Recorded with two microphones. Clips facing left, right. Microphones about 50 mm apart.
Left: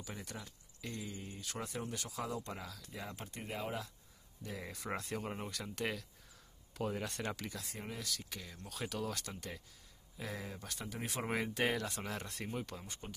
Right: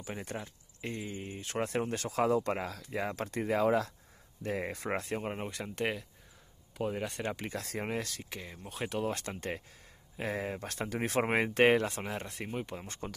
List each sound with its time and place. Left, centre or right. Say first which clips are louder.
0.0 s speech: right 7 dB; right
4.4 s speech: right 10 dB; right
6.8 s speech: right 4 dB; centre
7.6 s speech: right 10 dB; right
8.2 s speech: right 5 dB; right
10.8 s speech: right 11 dB; right
12.0 s speech: right 4 dB; right
12.8 s speech: right 7 dB; right